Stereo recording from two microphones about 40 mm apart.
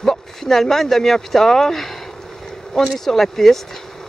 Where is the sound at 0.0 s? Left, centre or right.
Centre.